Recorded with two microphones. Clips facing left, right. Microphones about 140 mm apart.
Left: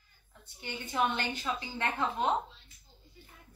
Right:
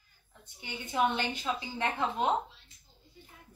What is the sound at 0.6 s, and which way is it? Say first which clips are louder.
A woman's voice: right 1 dB; 15° right (ahead or behind).